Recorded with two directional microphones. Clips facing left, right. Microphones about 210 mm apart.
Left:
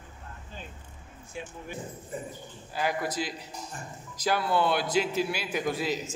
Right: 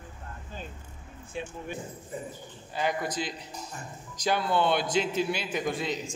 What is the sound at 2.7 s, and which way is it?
A man's voice, 5° left (ahead or behind).